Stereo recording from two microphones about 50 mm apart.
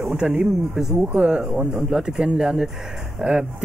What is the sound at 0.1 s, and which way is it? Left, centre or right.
Speech, right.